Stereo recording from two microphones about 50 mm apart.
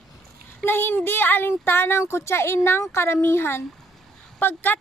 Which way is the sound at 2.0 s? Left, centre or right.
Left.